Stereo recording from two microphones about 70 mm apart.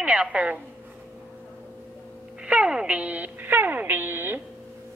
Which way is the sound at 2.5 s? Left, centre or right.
Centre.